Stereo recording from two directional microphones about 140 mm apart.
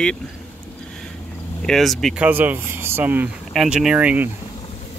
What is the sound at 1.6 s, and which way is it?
Speech, centre (ahead or behind).